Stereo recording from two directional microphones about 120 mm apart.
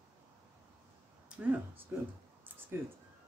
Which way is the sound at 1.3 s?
15° right (ahead or behind).